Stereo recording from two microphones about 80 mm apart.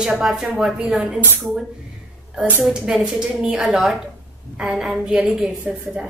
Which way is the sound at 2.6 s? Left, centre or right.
Centre.